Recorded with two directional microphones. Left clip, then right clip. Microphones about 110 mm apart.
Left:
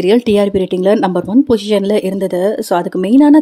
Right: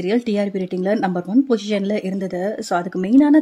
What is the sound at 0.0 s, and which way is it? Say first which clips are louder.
Speech: left 9 dB; 45° left (ahead or behind).